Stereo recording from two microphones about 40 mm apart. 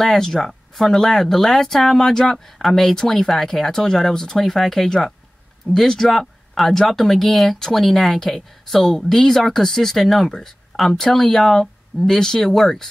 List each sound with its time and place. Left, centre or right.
0.0 s speech: centre
4.4 s speech: centre
4.8 s speech: centre
6.0 s speech: centre